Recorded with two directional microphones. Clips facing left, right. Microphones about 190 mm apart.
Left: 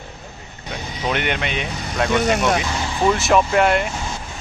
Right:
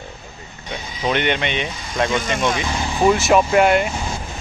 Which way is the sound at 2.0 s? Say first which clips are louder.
Left 6 dB; 70° left (ahead or behind).